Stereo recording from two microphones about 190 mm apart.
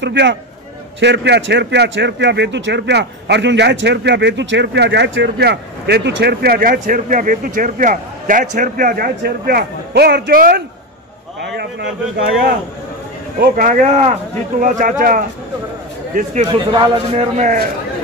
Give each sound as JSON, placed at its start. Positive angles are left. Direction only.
{"t": 0.0, "sound": "a man's voice", "side_deg": -70}
{"t": 13.4, "sound": "speech", "side_deg": -45}
{"t": 16.4, "sound": "a man's voice", "side_deg": -25}
{"t": 17.4, "sound": "speech", "side_deg": -40}